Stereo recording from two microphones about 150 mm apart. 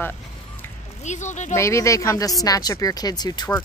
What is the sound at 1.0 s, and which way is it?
Speech, 50° left (ahead or behind).